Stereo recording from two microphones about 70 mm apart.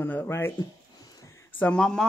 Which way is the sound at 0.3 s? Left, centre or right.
Left.